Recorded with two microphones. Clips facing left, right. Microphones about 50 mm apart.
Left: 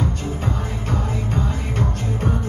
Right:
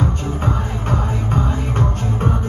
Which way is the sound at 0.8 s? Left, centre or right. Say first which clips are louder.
Right 3 dB; right.